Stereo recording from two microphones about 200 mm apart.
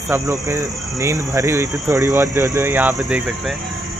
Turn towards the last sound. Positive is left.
turn(degrees=-10)  # may be behind; listen again after turning